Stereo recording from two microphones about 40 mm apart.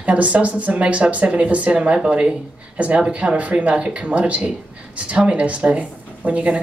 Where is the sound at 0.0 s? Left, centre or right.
Right.